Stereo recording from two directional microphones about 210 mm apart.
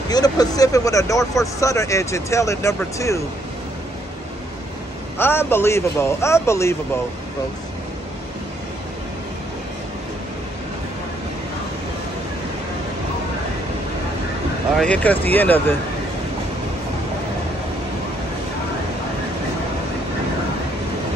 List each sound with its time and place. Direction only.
0.1 s a man's voice: 20° left (ahead or behind)
5.1 s a man's voice: 10° left (ahead or behind)
14.8 s a man's voice: 5° left (ahead or behind)